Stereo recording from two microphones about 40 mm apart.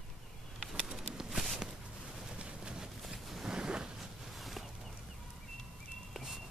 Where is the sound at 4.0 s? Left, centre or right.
Centre.